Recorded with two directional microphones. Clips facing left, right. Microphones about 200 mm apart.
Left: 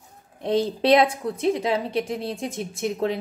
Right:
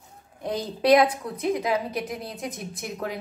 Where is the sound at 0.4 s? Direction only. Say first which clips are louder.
Left 5 dB; 25° left (ahead or behind).